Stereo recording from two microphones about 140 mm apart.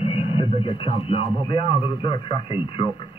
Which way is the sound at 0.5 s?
40° left (ahead or behind).